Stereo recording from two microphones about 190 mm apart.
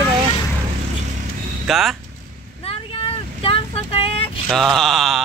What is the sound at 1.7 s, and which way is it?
Speech, centre (ahead or behind).